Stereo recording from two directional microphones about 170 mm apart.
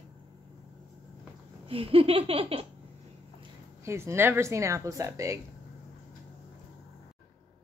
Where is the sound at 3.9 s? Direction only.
15° right (ahead or behind).